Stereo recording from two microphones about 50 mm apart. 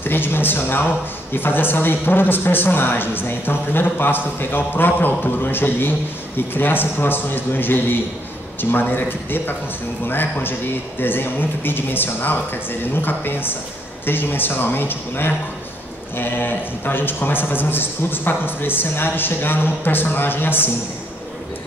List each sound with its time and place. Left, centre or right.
0.0 s a woman's voice: left